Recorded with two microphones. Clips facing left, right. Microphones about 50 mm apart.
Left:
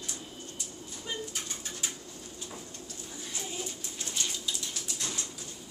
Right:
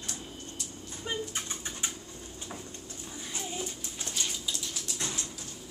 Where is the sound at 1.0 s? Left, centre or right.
Right.